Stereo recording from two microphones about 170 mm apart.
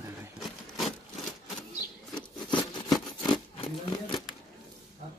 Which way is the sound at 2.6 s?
25° left (ahead or behind).